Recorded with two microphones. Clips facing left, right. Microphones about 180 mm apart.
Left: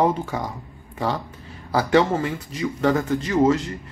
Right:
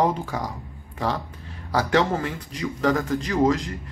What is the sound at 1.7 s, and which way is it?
Speech, 5° left (ahead or behind).